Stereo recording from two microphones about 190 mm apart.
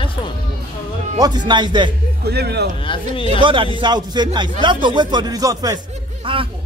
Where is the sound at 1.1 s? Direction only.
20° right (ahead or behind).